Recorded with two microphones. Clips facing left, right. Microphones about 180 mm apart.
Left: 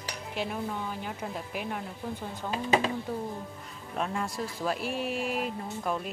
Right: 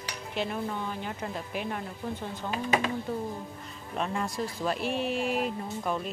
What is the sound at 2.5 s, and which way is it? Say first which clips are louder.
Speech: left 2 dB; 30° left (ahead or behind).